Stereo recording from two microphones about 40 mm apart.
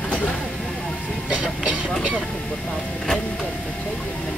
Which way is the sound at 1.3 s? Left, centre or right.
Right.